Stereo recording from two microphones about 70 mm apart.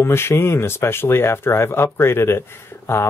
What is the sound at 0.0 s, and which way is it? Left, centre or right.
Speech, left.